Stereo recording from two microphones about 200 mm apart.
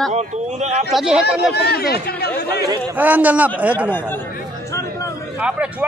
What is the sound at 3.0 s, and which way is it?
Speech, 10° right (ahead or behind).